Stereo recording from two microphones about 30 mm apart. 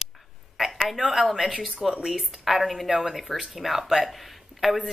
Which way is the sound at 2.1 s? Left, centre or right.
Centre.